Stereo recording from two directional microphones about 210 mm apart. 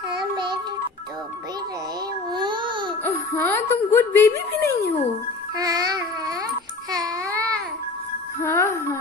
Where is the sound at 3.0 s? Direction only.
10° left (ahead or behind).